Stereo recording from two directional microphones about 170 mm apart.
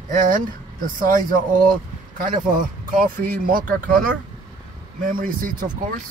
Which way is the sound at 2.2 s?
55° right (ahead or behind).